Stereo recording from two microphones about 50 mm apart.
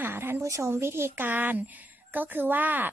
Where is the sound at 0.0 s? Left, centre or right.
Right.